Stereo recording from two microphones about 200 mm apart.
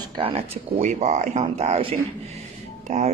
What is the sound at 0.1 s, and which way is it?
Speech, 30° right (ahead or behind).